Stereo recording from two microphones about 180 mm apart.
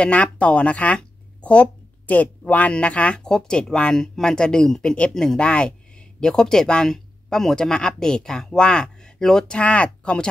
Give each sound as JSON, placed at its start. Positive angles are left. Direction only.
{"t": 0.0, "sound": "speech", "side_deg": 5}